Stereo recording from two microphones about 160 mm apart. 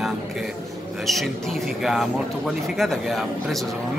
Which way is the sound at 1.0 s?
Centre (ahead or behind).